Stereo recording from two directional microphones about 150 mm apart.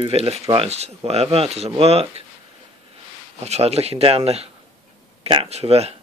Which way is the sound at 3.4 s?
45° right (ahead or behind).